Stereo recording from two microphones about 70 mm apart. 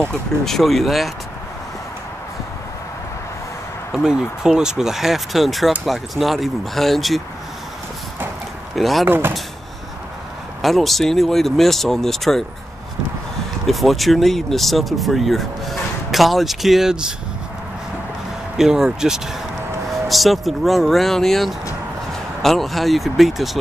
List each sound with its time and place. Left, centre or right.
0.5 s speech: centre
3.9 s speech: centre
8.7 s speech: centre
9.0 s speech: right
10.6 s speech: centre
13.7 s speech: centre
18.6 s speech: centre